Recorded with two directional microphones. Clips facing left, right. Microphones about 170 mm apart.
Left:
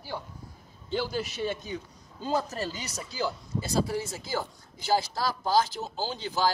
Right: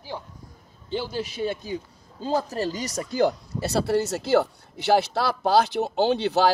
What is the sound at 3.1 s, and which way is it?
Speech, 65° right (ahead or behind).